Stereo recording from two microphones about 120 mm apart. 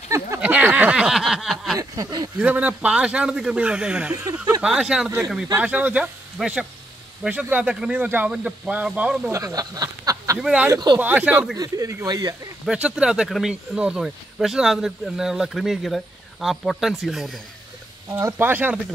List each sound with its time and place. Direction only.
0.4 s a sound: 15° right (ahead or behind)
1.8 s a sound: 30° right (ahead or behind)
2.3 s speech: 15° right (ahead or behind)
4.1 s a sound: 30° right (ahead or behind)
4.6 s speech: 5° right (ahead or behind)
9.3 s speech: 30° right (ahead or behind)
10.4 s speech: 5° right (ahead or behind)
10.7 s speech: 35° right (ahead or behind)
11.0 s speech: 15° right (ahead or behind)
11.5 s speech: 30° right (ahead or behind)
12.6 s speech: 5° right (ahead or behind)
18.2 s speech: 15° right (ahead or behind)